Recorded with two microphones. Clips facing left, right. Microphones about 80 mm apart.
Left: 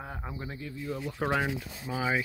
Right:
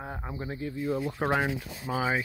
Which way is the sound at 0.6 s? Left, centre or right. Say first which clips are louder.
Right 8 dB; right.